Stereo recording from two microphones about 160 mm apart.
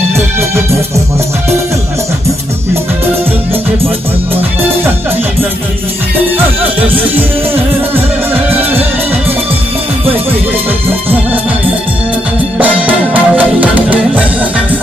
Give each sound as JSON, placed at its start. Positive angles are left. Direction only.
{"t": 6.6, "sound": "music", "side_deg": -35}
{"t": 12.5, "sound": "music", "side_deg": -10}